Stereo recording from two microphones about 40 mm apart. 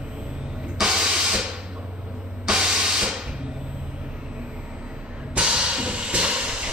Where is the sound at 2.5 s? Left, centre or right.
Centre.